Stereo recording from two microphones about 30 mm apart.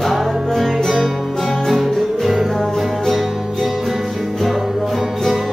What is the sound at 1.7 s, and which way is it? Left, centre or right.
Music, centre.